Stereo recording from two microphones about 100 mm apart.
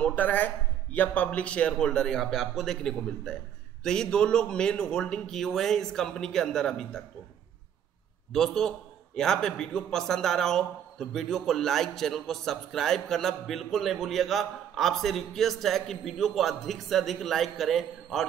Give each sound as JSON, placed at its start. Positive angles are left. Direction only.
{"t": 0.0, "sound": "a man's voice", "side_deg": 15}
{"t": 8.3, "sound": "a man's voice", "side_deg": 5}